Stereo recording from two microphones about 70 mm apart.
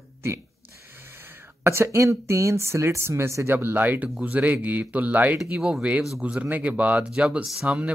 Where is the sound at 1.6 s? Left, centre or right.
Right.